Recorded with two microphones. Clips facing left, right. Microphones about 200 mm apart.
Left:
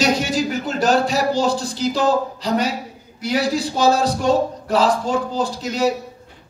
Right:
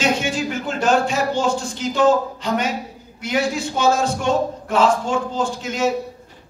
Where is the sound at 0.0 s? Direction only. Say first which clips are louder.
Left 2 dB; 40° left (ahead or behind).